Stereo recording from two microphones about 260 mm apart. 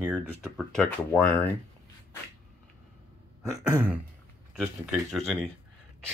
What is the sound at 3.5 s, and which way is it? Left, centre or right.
Speech, centre.